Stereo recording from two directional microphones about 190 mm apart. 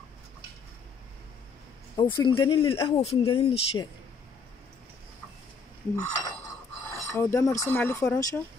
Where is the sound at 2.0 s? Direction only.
25° left (ahead or behind).